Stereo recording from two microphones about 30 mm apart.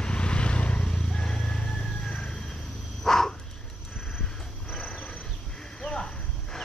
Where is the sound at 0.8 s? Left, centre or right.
Left.